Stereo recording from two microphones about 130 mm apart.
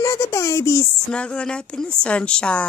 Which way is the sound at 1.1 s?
10° left (ahead or behind).